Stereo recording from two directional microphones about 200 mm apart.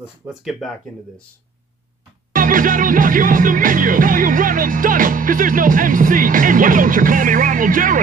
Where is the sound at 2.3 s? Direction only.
40° right (ahead or behind).